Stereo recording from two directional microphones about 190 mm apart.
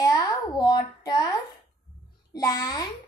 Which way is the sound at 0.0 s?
20° left (ahead or behind).